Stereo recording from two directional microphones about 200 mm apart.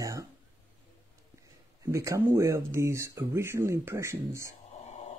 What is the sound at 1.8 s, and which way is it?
Speech, 15° right (ahead or behind).